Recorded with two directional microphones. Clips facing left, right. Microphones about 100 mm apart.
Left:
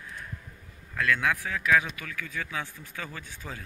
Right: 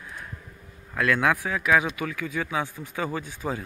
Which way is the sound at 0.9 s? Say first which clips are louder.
Right 4 dB; 40° right (ahead or behind).